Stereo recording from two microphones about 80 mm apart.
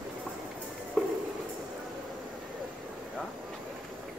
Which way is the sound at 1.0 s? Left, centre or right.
Centre.